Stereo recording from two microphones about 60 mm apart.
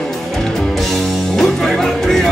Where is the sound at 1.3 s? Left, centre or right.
Centre.